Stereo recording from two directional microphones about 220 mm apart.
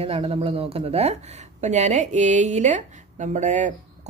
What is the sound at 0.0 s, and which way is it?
Speech, 25° right (ahead or behind).